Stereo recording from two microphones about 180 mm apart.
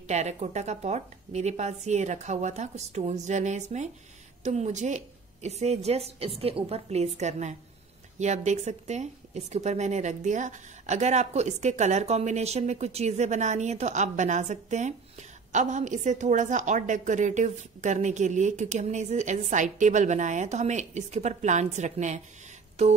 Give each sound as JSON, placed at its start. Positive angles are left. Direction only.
{"t": 0.1, "sound": "speech", "side_deg": -40}